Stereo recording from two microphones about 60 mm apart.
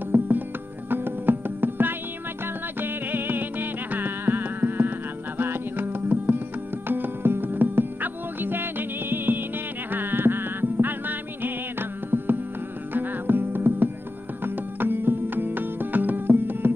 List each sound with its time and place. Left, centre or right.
0.1 s music: right